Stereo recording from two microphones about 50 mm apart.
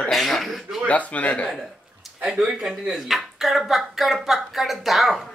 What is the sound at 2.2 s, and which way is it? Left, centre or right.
Speech, centre.